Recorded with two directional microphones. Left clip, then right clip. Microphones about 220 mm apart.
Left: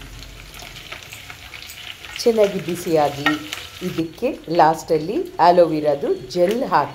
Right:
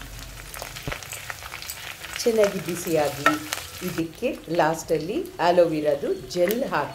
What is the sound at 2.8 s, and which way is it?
Speech, 15° left (ahead or behind).